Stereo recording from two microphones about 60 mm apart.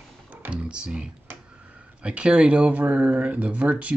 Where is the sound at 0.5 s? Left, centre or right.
Centre.